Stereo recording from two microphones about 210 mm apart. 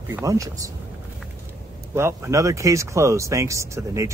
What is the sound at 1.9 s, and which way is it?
Speech, 10° right (ahead or behind).